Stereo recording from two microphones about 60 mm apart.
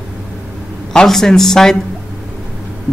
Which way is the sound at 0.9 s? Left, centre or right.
Centre.